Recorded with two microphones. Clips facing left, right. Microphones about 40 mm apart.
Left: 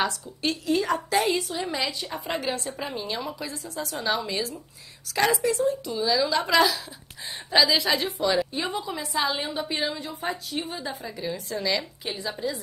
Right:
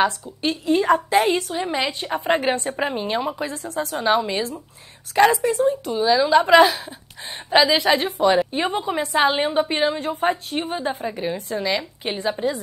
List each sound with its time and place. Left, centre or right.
0.0 s a woman's voice: right